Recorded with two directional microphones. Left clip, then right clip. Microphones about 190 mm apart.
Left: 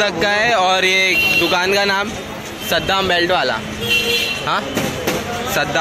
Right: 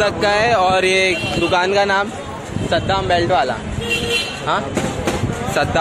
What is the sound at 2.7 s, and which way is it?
Speech, 20° left (ahead or behind).